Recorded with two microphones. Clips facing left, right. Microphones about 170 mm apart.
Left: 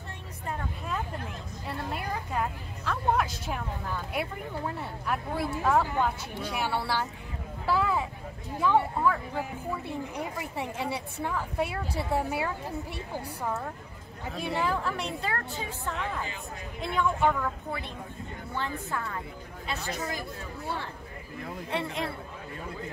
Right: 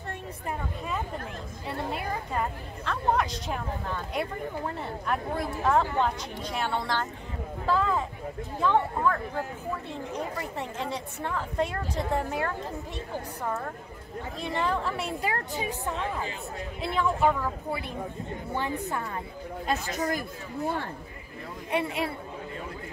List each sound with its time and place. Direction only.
1.9 s a woman's voice: centre (ahead or behind)
15.2 s a woman's voice: 15° right (ahead or behind)
16.8 s a woman's voice: centre (ahead or behind)
18.5 s a woman's voice: 15° right (ahead or behind)
19.6 s speech: 45° right (ahead or behind)
21.6 s a woman's voice: 10° right (ahead or behind)